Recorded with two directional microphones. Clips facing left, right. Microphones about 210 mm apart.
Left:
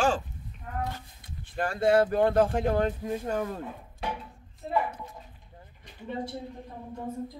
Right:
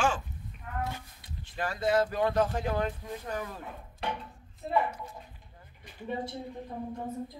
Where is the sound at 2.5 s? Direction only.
50° left (ahead or behind).